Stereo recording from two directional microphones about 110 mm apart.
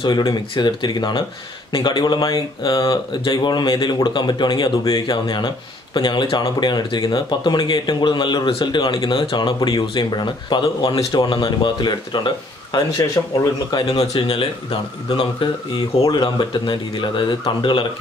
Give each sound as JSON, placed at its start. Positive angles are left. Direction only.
{"t": 0.0, "sound": "speech", "side_deg": 45}
{"t": 12.7, "sound": "speech", "side_deg": 30}
{"t": 13.8, "sound": "speech", "side_deg": 60}
{"t": 16.0, "sound": "speech", "side_deg": 40}